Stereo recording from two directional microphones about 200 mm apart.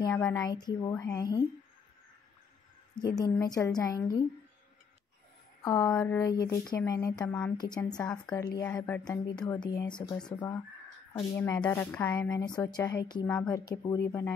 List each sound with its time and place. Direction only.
0.0 s a woman's voice: 10° left (ahead or behind)
0.5 s speech: 20° left (ahead or behind)
3.0 s a woman's voice: 20° left (ahead or behind)
5.6 s a woman's voice: 20° left (ahead or behind)
8.5 s a woman's voice: 10° left (ahead or behind)
9.0 s speech: 20° left (ahead or behind)
11.3 s a woman's voice: 10° left (ahead or behind)